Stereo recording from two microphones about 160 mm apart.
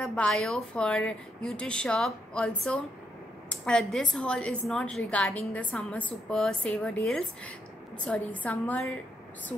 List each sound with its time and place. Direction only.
0.0 s a woman's voice: 5° left (ahead or behind)